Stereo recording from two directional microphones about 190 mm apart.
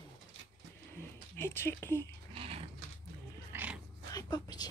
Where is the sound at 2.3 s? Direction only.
30° right (ahead or behind).